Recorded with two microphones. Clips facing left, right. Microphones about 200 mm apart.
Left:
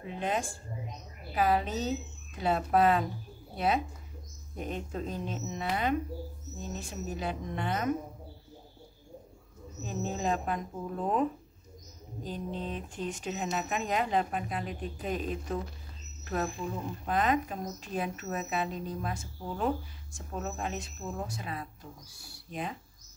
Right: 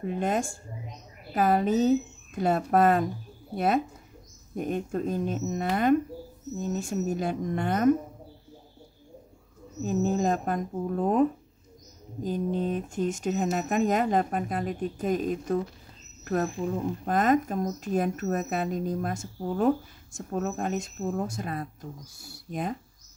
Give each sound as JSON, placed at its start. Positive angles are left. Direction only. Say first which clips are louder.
{"t": 0.0, "sound": "a woman's voice", "louder": "right 5 dB", "side_deg": -45}
{"t": 9.8, "sound": "a woman's voice", "louder": "right 7 dB", "side_deg": -45}